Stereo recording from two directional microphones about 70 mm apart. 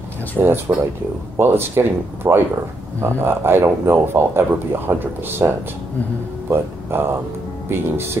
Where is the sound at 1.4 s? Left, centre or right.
Right.